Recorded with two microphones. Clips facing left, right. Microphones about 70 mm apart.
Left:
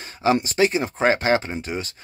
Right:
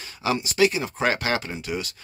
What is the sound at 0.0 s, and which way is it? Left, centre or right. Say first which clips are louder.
Speech: left 6 dB; left.